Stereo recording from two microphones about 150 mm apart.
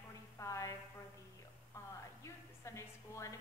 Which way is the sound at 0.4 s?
20° left (ahead or behind).